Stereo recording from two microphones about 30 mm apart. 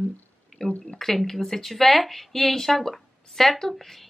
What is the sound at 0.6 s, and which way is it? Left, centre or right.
Speech, left.